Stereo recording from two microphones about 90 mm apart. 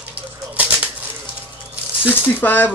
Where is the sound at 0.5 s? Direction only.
15° right (ahead or behind).